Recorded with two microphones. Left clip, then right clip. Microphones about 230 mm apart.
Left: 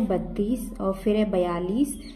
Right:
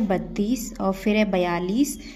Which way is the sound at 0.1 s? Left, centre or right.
Right.